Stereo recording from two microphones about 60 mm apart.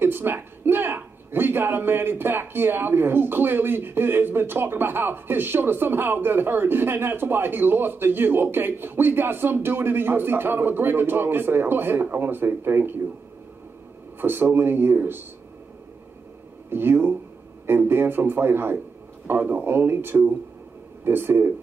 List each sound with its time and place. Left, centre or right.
0.0 s a man's voice: right
14.2 s a man's voice: right
16.7 s a man's voice: right